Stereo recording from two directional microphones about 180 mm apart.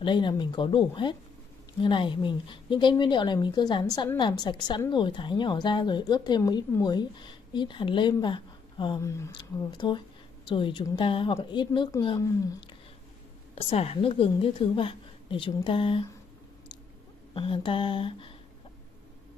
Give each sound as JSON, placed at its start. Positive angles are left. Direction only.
{"t": 0.0, "sound": "a woman's voice", "side_deg": 25}
{"t": 13.6, "sound": "a woman's voice", "side_deg": 35}
{"t": 17.3, "sound": "a woman's voice", "side_deg": 30}